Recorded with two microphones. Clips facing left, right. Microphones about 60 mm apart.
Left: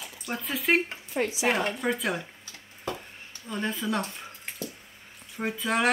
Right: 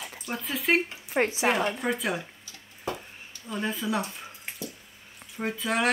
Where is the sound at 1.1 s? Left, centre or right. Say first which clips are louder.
Right 3 dB; right.